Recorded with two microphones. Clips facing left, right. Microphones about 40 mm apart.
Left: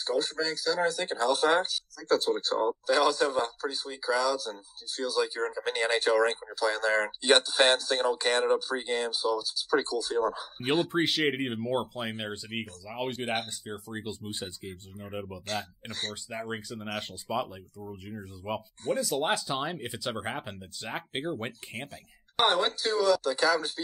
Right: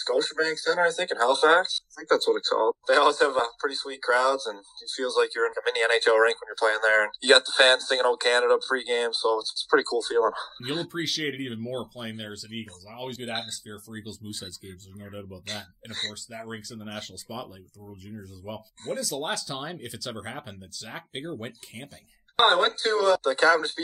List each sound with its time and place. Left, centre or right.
0.0 s speech: right
10.7 s speech: left
11.0 s speech: left
15.4 s speech: right
16.3 s speech: left
22.4 s speech: right